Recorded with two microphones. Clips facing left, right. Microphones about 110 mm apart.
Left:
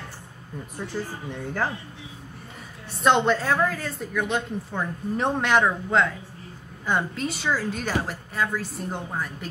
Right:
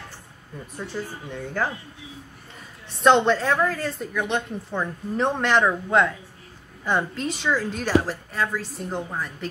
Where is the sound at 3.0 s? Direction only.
5° left (ahead or behind).